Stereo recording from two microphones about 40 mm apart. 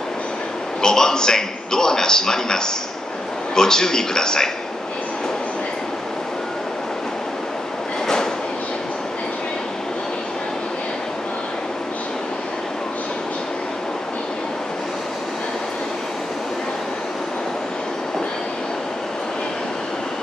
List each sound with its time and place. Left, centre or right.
0.8 s a man's voice: centre